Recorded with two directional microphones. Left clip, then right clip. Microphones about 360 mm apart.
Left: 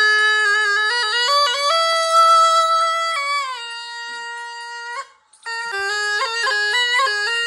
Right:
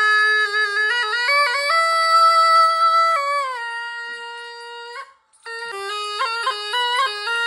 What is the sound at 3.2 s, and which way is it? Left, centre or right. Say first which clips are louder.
Music: even; right.